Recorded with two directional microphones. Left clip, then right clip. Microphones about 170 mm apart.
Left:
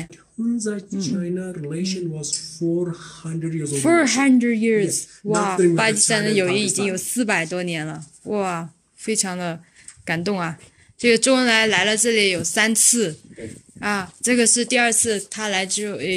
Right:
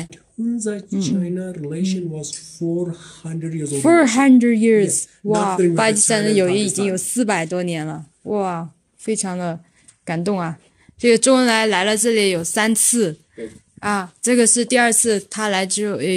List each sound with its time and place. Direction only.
0.8 s speech: 5° right (ahead or behind)
3.7 s speech: 25° right (ahead or behind)
5.3 s speech: 10° right (ahead or behind)
5.8 s speech: 25° right (ahead or behind)